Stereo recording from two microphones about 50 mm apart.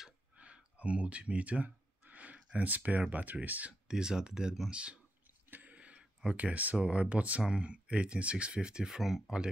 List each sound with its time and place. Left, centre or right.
0.4 s speech: right
3.8 s speech: centre
5.5 s a sound: right
5.8 s speech: right; by 9.2 s centre